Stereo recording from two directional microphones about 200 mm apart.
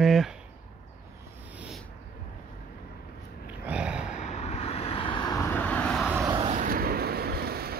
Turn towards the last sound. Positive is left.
turn(degrees=-50)  # may be behind; listen again after turning